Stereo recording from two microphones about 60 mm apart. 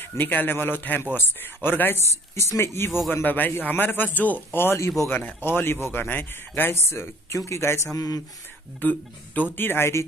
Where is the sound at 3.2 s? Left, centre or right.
Left.